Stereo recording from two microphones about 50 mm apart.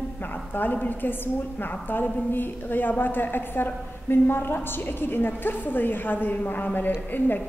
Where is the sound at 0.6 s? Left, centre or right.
Left.